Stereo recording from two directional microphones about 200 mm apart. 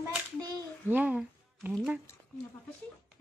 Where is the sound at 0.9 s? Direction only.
5° right (ahead or behind).